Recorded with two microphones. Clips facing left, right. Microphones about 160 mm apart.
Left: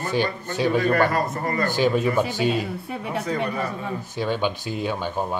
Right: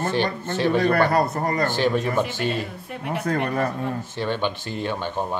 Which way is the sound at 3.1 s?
55° right (ahead or behind).